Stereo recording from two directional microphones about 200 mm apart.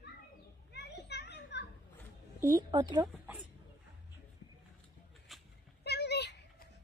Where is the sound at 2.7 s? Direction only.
20° right (ahead or behind).